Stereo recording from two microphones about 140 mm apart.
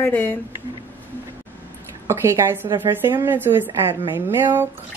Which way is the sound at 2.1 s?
20° right (ahead or behind).